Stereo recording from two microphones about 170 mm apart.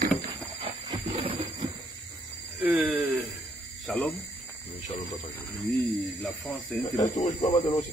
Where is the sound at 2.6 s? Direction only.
10° right (ahead or behind).